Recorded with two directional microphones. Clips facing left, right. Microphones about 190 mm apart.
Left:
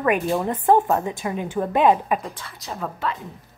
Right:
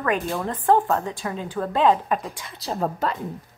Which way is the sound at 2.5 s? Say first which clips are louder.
Right 7 dB; 35° right (ahead or behind).